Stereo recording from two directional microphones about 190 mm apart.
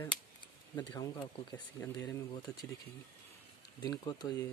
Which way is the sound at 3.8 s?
20° left (ahead or behind).